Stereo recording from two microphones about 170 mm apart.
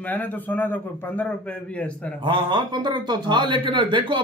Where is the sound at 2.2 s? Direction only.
25° right (ahead or behind).